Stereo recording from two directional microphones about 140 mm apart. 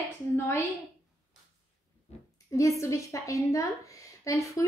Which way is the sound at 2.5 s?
20° left (ahead or behind).